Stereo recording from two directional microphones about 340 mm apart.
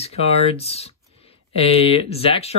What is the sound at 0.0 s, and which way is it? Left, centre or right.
Speech, centre.